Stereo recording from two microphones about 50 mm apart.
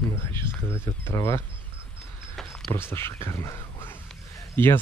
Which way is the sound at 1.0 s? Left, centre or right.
Left.